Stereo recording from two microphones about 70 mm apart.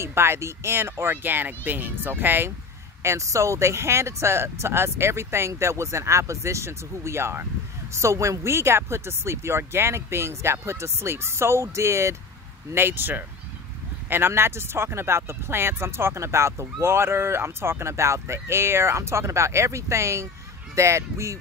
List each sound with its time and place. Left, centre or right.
0.0 s speech: right
3.0 s speech: right
12.7 s speech: right